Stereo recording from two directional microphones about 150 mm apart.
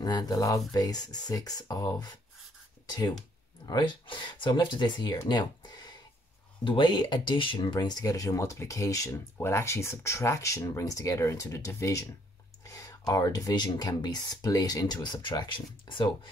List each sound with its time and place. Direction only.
0.0 s speech: 25° left (ahead or behind)